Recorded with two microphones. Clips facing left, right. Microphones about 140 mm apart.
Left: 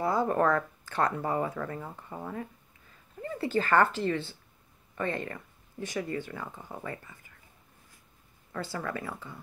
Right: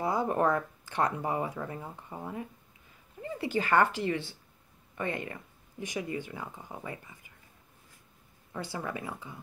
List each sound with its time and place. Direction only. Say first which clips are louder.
0.0 s speech: left 2 dB; 20° right (ahead or behind)
8.5 s speech: left 2 dB; 15° right (ahead or behind)